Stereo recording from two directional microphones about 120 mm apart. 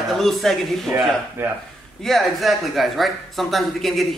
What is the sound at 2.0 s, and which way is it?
A man's voice, centre (ahead or behind).